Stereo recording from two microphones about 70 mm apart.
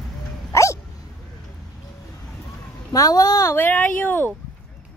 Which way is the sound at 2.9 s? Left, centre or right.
Left.